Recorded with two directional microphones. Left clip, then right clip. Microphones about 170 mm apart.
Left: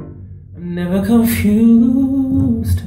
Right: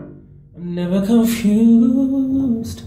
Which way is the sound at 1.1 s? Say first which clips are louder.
Left 2 dB; 15° right (ahead or behind).